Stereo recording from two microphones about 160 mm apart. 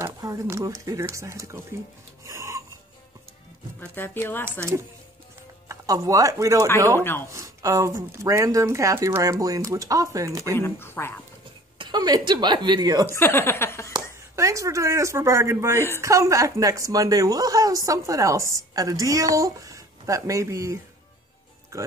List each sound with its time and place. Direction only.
0.0 s speech: 20° right (ahead or behind)
2.2 s a sound: 20° right (ahead or behind)
3.9 s speech: 15° left (ahead or behind)
5.7 s speech: 20° right (ahead or behind)
7.0 s speech: 15° left (ahead or behind)
7.2 s speech: 20° right (ahead or behind)
10.5 s speech: 15° left (ahead or behind)
11.8 s speech: 25° right (ahead or behind)
13.0 s speech: 15° left (ahead or behind)
14.3 s speech: 20° right (ahead or behind)